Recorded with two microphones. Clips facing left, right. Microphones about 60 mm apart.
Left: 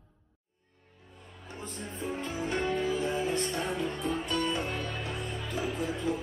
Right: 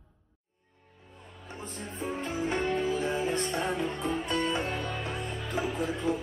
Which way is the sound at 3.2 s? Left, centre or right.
Right.